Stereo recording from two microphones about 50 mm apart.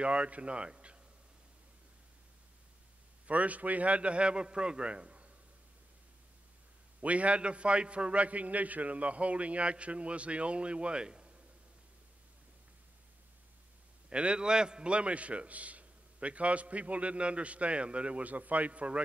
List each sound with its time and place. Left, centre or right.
0.0 s a man's voice: right
3.3 s a man's voice: right
7.0 s a man's voice: right
14.0 s a man's voice: right